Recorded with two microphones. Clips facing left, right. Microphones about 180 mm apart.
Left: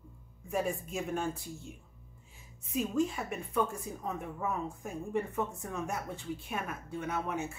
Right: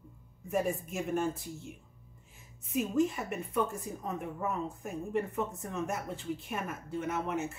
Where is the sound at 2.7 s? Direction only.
5° right (ahead or behind).